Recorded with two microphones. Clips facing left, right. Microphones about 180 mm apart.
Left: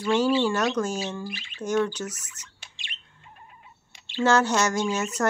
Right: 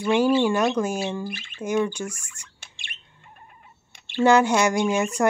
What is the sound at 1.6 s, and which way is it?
Speech, 10° right (ahead or behind).